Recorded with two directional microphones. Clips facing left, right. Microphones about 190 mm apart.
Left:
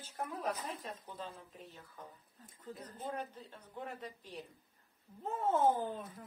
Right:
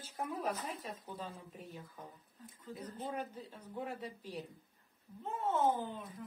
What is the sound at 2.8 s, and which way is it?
Speech, 10° right (ahead or behind).